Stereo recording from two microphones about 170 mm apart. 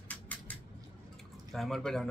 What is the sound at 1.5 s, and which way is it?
Speech, centre (ahead or behind).